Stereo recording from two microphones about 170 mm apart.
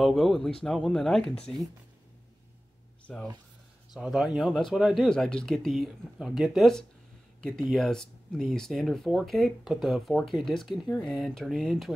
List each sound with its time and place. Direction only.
0.0 s speech: centre (ahead or behind)
3.9 s speech: centre (ahead or behind)